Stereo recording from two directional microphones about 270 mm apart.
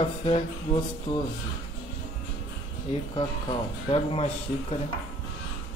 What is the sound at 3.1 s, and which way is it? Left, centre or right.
Speech, centre.